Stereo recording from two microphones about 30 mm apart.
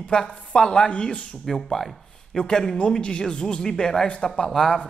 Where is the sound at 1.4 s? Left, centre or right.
Centre.